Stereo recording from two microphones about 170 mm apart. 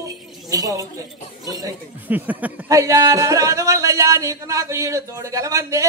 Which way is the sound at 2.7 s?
20° right (ahead or behind).